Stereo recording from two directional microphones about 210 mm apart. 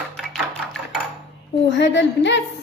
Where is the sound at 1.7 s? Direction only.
55° left (ahead or behind).